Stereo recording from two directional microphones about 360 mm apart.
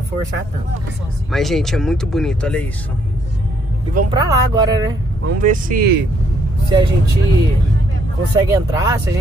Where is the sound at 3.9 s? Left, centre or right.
Right.